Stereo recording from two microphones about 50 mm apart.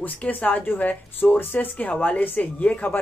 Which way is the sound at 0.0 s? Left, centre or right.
Left.